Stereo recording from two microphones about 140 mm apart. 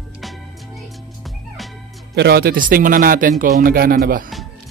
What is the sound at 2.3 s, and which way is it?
Speech, 85° right.